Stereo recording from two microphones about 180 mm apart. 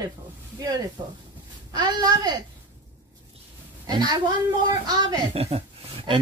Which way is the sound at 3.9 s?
25° right (ahead or behind).